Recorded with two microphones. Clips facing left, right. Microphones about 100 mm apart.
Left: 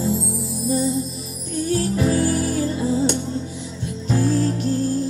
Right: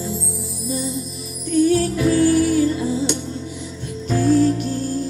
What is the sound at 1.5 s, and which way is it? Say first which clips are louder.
Music: right 5 dB; 30° left (ahead or behind).